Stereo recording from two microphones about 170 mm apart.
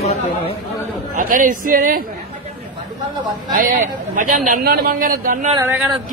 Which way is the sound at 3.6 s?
55° right (ahead or behind).